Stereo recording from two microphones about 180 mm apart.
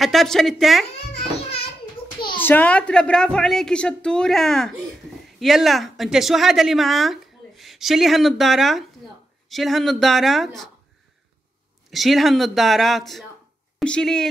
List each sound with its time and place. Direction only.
0.0 s a woman's voice: centre (ahead or behind)
2.1 s a sound: 25° left (ahead or behind)
2.4 s a woman's voice: 10° left (ahead or behind)
11.9 s a woman's voice: centre (ahead or behind)